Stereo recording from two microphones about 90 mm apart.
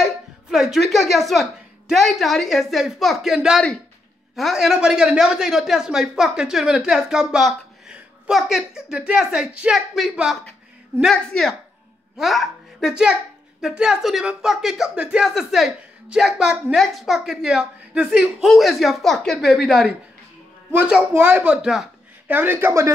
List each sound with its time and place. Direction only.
0.0 s a woman's voice: 5° right (ahead or behind)
21.1 s speech: 20° right (ahead or behind)
22.3 s a man's voice: 20° right (ahead or behind)
22.7 s speech: 35° right (ahead or behind)